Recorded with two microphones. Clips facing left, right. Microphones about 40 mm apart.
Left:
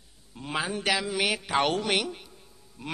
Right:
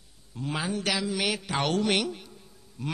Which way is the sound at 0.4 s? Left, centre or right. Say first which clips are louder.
Even; centre.